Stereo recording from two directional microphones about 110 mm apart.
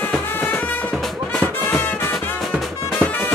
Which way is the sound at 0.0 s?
15° left (ahead or behind).